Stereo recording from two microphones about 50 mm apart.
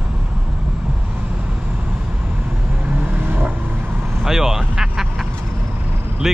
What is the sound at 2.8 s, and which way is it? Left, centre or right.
Vehicle, right.